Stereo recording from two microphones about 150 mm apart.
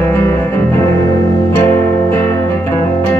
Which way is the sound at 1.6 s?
20° left (ahead or behind).